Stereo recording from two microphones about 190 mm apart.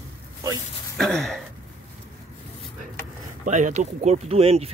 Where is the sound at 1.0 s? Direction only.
Centre (ahead or behind).